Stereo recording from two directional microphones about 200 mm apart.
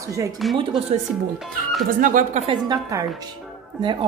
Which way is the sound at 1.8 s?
40° right (ahead or behind).